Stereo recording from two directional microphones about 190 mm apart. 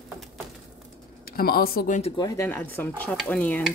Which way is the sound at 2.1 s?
20° left (ahead or behind).